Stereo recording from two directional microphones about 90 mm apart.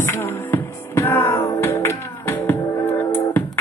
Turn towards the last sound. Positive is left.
turn(degrees=25)  # may be behind; listen again after turning